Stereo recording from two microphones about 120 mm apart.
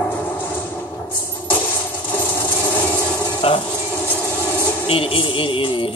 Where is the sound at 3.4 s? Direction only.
55° left (ahead or behind).